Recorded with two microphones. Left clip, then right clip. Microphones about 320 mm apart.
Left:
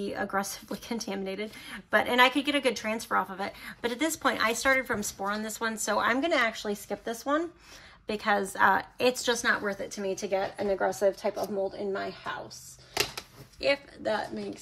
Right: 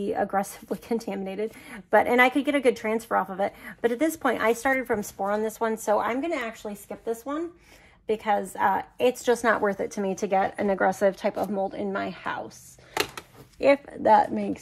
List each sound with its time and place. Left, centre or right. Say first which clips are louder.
0.0 s speech: right 5 dB; centre; by 12.4 s right
13.6 s a woman's voice: right 7 dB; centre